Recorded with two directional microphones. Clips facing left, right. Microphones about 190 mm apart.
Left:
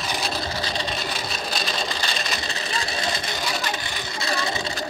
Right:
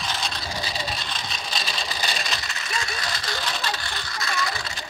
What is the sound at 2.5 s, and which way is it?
Vehicle, 35° left (ahead or behind).